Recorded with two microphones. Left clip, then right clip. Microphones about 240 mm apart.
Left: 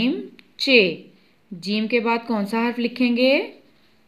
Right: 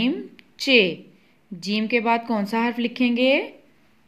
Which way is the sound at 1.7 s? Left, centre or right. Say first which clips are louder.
Even; centre.